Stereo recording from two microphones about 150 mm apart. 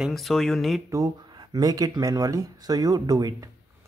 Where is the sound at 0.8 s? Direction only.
25° right (ahead or behind).